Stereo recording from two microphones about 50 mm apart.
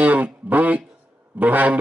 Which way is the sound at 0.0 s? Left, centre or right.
Right.